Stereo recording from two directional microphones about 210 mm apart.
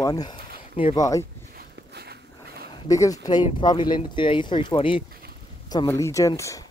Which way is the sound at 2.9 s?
15° left (ahead or behind).